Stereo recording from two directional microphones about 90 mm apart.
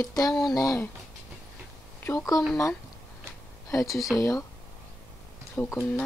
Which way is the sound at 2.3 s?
40° left (ahead or behind).